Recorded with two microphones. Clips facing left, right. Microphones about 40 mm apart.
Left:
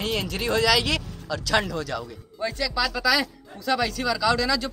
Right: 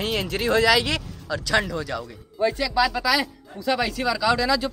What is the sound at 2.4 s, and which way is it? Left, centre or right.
Speech, centre.